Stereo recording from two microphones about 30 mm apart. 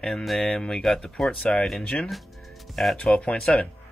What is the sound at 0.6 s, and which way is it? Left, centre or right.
Speech, centre.